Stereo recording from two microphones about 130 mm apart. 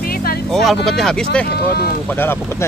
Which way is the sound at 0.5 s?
Centre (ahead or behind).